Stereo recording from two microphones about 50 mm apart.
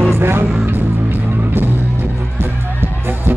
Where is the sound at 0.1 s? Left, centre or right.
Right.